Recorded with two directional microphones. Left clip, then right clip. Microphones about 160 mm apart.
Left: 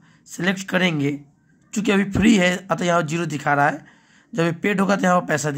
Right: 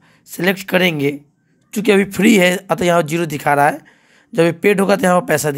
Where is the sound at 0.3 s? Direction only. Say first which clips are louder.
Right 6 dB; 40° right (ahead or behind).